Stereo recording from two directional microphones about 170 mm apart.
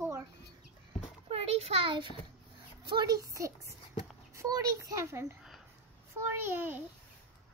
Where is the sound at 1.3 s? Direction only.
35° right (ahead or behind); by 6.8 s 10° right (ahead or behind).